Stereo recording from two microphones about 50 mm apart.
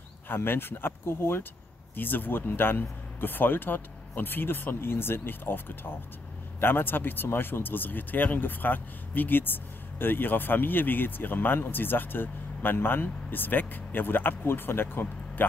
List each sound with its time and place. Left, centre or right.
0.3 s speech: left
2.0 s speech: left